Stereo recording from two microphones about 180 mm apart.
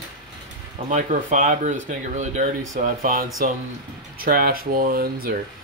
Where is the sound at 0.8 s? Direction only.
45° right (ahead or behind).